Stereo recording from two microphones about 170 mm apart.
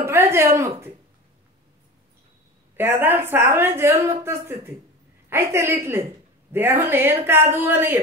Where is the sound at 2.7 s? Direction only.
10° right (ahead or behind).